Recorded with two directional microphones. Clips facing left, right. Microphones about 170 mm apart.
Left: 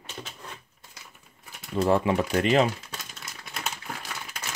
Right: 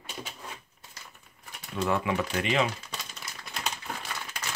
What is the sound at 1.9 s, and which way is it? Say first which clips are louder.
Speech: left 5 dB; 40° left (ahead or behind).